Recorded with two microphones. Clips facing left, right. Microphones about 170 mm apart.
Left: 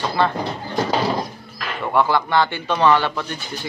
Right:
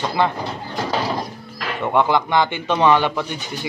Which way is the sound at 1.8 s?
20° right (ahead or behind).